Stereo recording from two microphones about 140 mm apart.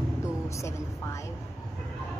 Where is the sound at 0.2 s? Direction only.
20° left (ahead or behind).